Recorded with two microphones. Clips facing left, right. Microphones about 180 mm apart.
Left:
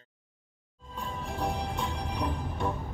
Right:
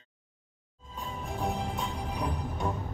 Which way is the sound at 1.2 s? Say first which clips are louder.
Even; 5° right (ahead or behind).